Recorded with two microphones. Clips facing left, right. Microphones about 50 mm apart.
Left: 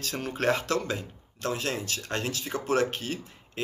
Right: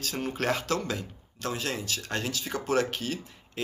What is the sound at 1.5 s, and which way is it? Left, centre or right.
Speech, left.